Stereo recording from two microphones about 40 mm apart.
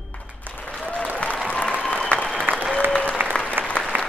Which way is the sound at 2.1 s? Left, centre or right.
Right.